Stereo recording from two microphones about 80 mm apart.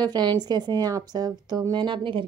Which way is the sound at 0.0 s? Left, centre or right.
Right.